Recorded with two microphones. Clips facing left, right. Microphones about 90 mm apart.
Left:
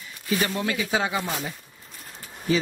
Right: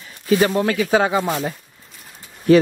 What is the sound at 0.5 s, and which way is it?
Speech, 55° right (ahead or behind).